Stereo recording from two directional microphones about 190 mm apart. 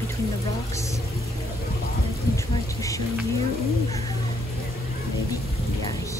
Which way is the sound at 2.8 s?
15° left (ahead or behind).